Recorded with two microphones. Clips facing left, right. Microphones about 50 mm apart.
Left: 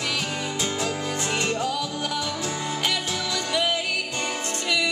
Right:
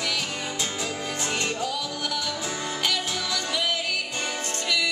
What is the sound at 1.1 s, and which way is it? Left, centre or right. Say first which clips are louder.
Music: left 3 dB; left.